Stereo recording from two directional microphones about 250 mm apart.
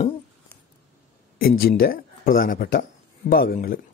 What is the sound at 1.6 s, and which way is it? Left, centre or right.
Speech, left.